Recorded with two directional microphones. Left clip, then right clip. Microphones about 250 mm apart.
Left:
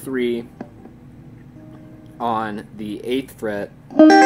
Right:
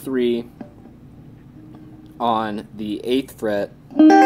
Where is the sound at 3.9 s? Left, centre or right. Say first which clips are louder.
Left 2 dB; left.